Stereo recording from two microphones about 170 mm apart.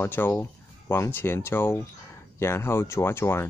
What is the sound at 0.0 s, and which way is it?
Speech, 10° left (ahead or behind).